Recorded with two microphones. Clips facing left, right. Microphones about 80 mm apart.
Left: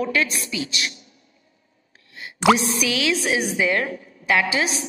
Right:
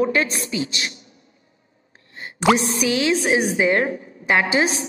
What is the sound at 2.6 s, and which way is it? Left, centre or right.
A woman's voice, right.